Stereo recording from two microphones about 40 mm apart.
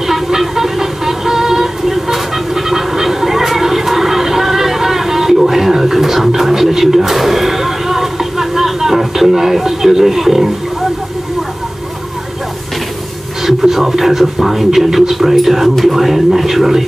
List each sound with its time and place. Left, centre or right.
0.0 s music: centre
13.5 s speech: centre